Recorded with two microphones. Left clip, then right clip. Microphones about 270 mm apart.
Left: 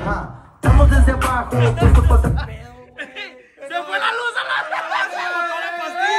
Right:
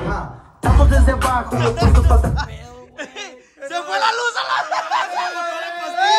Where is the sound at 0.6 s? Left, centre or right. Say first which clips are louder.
Even; right.